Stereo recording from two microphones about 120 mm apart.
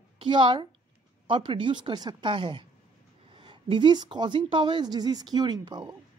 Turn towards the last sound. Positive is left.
turn(degrees=-35)  # may be behind; listen again after turning